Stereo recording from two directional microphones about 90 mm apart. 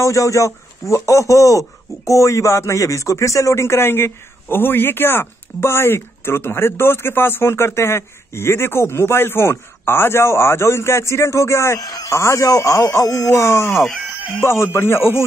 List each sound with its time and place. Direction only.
0.0 s speech: 35° left (ahead or behind)
11.8 s speech: 40° left (ahead or behind); by 15.2 s 25° left (ahead or behind)